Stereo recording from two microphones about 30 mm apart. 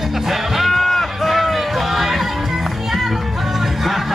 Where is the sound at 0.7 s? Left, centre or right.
Centre.